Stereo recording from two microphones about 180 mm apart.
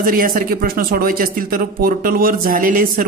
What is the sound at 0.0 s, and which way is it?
Speech, 55° right (ahead or behind).